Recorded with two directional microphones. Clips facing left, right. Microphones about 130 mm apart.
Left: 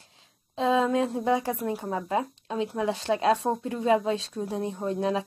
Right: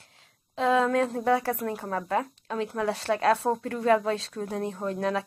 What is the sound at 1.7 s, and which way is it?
Speech, 20° left (ahead or behind).